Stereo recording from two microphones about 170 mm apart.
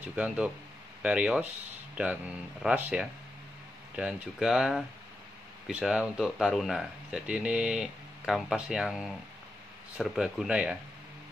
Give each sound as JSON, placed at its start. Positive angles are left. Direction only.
{"t": 0.0, "sound": "speech", "side_deg": -10}